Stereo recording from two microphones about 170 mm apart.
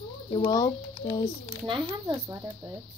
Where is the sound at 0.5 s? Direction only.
20° left (ahead or behind).